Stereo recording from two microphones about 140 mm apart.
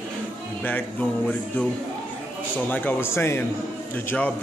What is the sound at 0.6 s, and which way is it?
Speech, 10° left (ahead or behind).